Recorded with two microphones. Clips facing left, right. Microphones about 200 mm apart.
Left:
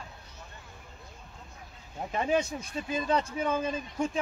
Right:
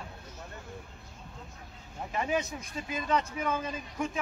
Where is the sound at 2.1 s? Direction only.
30° left (ahead or behind).